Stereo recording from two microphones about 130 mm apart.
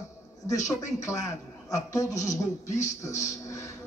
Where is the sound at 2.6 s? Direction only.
65° left (ahead or behind).